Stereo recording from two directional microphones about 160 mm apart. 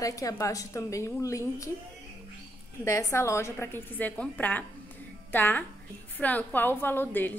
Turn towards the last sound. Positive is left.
turn(degrees=10)  # may be behind; listen again after turning